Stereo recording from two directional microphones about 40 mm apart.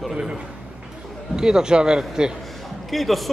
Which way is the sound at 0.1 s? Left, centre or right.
Centre.